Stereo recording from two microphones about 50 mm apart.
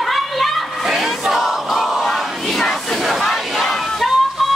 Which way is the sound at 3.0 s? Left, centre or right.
Centre.